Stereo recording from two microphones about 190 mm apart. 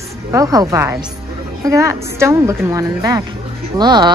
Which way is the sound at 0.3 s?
20° right (ahead or behind).